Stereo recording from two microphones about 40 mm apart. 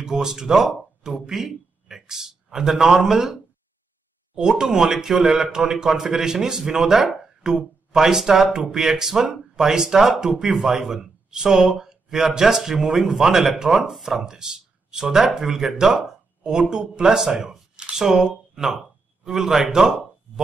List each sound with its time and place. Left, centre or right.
0.0 s a man's voice: centre
4.4 s speech: centre